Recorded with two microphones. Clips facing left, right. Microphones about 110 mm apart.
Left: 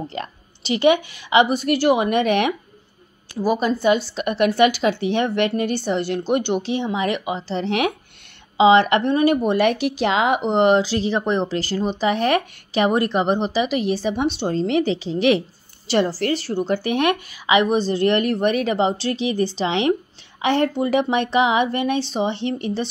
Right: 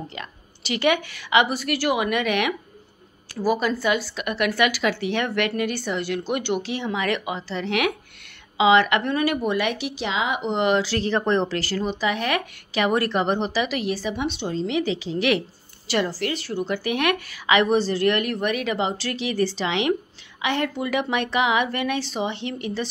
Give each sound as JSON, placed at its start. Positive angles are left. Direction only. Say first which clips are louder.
{"t": 0.1, "sound": "speech", "louder": "left 7 dB", "side_deg": 35}
{"t": 0.7, "sound": "a woman's voice", "louder": "left 5 dB", "side_deg": 20}
{"t": 10.5, "sound": "speech", "louder": "left 5 dB", "side_deg": 35}
{"t": 10.8, "sound": "a woman's voice", "louder": "left 2 dB", "side_deg": 20}
{"t": 14.8, "sound": "a woman's voice", "louder": "left 4 dB", "side_deg": 30}